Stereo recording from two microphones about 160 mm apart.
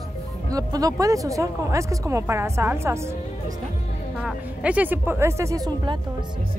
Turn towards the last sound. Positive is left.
turn(degrees=-25)  # may be behind; listen again after turning